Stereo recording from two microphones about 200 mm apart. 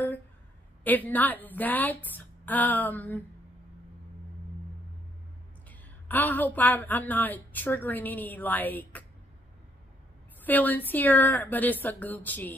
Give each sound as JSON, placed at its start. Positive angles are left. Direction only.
{"t": 0.8, "sound": "a woman's voice", "side_deg": 10}
{"t": 5.7, "sound": "a woman's voice", "side_deg": 10}
{"t": 10.4, "sound": "a woman's voice", "side_deg": 10}